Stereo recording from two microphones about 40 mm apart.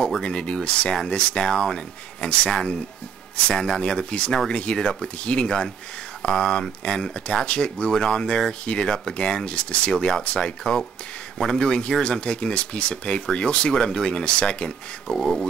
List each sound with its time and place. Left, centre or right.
0.2 s speech: left
1.4 s speech: centre
2.2 s speech: left
2.5 s speech: centre
7.9 s speech: centre
9.9 s speech: centre
15.1 s speech: centre